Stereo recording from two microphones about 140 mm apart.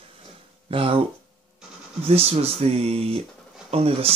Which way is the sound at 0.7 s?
40° right (ahead or behind).